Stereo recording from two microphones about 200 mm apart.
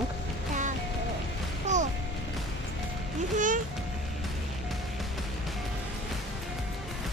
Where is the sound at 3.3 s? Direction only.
40° right (ahead or behind).